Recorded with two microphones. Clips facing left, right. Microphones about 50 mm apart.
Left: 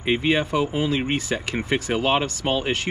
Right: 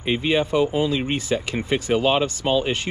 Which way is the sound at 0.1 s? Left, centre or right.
Left.